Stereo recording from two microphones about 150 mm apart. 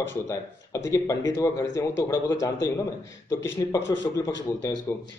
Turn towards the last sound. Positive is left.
turn(degrees=20)  # may be behind; listen again after turning